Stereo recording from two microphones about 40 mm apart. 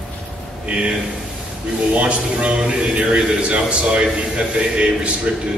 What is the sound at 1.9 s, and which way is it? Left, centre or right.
A man's voice, right.